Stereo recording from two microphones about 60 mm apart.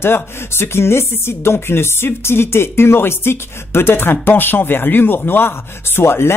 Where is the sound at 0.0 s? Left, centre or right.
Left.